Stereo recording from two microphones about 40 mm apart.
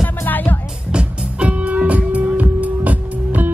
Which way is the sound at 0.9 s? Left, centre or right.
Right.